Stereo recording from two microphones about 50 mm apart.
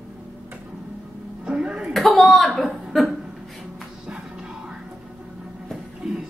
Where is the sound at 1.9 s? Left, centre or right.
Centre.